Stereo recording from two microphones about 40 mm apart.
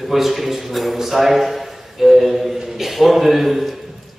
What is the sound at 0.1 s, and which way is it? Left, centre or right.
A man's voice, centre.